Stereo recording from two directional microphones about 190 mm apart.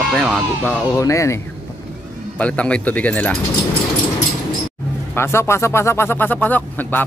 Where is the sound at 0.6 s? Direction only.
15° left (ahead or behind).